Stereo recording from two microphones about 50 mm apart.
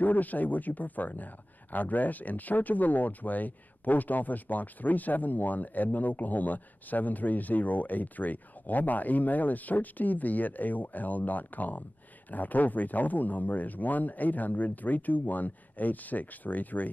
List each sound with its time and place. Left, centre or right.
0.0 s speech: left